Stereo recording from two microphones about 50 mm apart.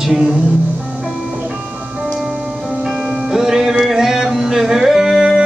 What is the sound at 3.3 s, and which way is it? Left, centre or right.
Music, centre.